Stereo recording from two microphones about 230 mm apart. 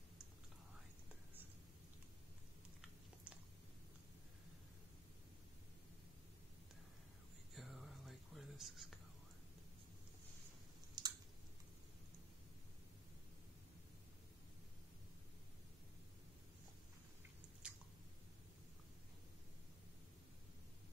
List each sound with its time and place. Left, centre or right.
7.5 s whispering: centre
11.0 s a sound: centre
17.6 s chewing: centre